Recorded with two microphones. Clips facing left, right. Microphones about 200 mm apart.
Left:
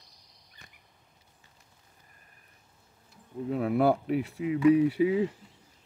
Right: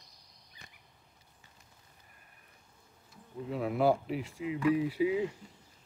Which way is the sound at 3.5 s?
60° left (ahead or behind).